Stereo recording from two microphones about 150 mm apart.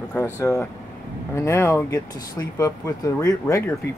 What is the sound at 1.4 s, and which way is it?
Speech, 15° left (ahead or behind).